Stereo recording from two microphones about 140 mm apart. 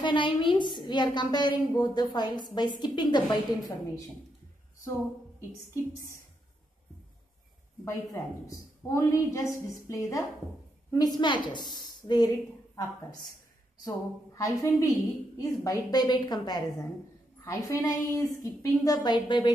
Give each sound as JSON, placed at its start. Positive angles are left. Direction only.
{"t": 0.0, "sound": "a woman's voice", "side_deg": 35}
{"t": 7.8, "sound": "a woman's voice", "side_deg": 20}